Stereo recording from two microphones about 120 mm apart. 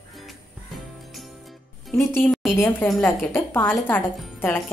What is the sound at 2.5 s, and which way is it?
A woman's voice, 20° left (ahead or behind).